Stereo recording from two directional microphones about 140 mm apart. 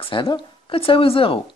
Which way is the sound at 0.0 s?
35° left (ahead or behind).